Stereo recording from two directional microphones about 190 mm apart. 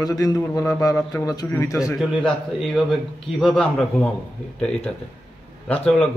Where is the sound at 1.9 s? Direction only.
Centre (ahead or behind).